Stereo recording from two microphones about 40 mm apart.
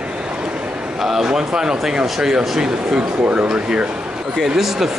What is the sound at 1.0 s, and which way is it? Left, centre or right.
Speech, centre.